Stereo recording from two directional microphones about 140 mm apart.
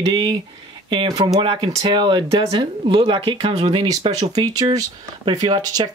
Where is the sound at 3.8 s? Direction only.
30° right (ahead or behind).